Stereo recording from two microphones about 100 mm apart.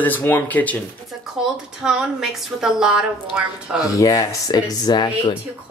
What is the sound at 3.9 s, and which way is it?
Speech, 35° left (ahead or behind).